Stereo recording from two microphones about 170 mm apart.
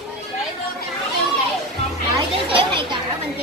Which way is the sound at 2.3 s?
30° right (ahead or behind).